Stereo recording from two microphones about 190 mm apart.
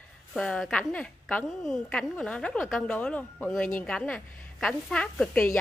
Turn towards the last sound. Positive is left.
turn(degrees=5)  # may be behind; listen again after turning